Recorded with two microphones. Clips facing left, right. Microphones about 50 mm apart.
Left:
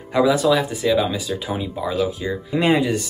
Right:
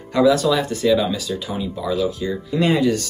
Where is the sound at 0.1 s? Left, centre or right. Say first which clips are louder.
Right 1 dB; centre.